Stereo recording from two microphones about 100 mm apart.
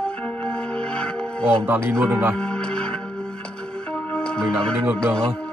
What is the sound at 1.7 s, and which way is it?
Speech, 25° right (ahead or behind).